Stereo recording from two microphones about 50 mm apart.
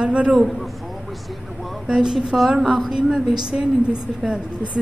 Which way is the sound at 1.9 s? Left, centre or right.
Centre.